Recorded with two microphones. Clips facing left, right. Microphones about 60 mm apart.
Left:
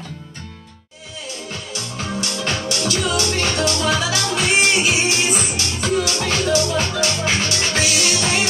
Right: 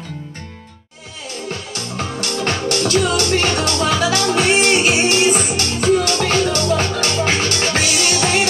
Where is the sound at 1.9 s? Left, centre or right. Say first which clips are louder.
Right 3 dB; right.